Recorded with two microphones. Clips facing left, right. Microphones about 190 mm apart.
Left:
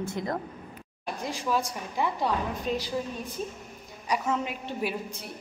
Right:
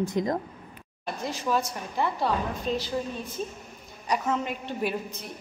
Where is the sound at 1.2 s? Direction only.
10° left (ahead or behind).